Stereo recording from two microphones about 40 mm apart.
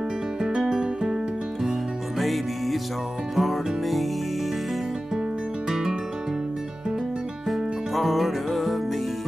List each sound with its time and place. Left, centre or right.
0.4 s music: centre
5.7 s music: centre
7.4 s music: centre